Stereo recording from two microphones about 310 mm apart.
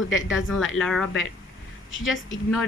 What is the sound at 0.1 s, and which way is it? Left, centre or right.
Speech, left.